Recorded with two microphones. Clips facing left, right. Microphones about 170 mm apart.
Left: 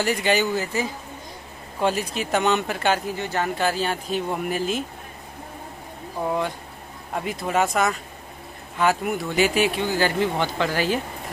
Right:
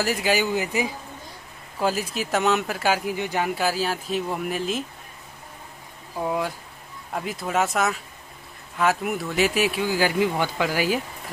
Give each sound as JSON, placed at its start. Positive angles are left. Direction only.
{"t": 0.0, "sound": "speech", "side_deg": -5}
{"t": 1.8, "sound": "speech", "side_deg": 0}
{"t": 6.2, "sound": "speech", "side_deg": -5}